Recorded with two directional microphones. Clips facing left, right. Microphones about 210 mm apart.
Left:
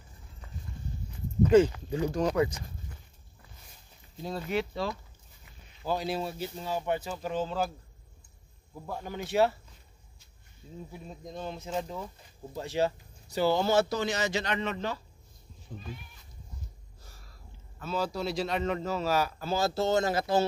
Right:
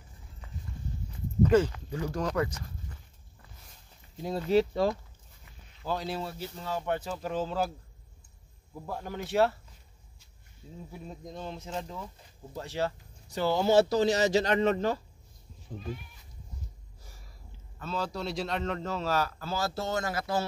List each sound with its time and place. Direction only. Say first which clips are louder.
1.5 s a man's voice: left 5 dB; 15° left (ahead or behind)
4.5 s speech: right 8 dB; 40° right (ahead or behind)
5.8 s a man's voice: left 2 dB; 10° left (ahead or behind)
8.9 s speech: even; centre (ahead or behind)
11.3 s speech: left 4 dB; 5° left (ahead or behind)
13.7 s speech: right 4 dB; 35° right (ahead or behind)
17.8 s a man's voice: left 2 dB; 5° left (ahead or behind); by 20.4 s 25° left (ahead or behind)